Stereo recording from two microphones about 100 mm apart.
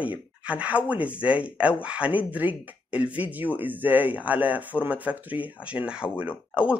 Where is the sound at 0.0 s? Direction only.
15° right (ahead or behind).